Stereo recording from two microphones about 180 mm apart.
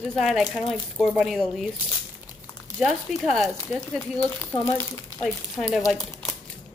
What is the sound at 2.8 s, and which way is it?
Speech, centre (ahead or behind).